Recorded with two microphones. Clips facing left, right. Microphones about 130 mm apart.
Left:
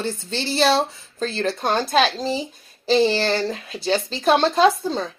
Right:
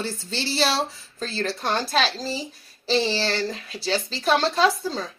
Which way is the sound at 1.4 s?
50° left (ahead or behind).